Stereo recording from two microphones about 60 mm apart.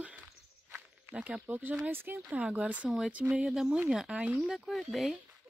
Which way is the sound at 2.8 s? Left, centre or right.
Centre.